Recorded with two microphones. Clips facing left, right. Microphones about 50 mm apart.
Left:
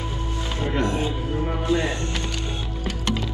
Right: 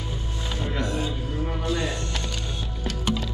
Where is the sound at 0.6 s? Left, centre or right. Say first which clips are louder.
Left 4 dB; left.